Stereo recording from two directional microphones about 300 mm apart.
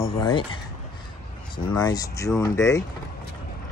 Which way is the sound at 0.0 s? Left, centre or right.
Centre.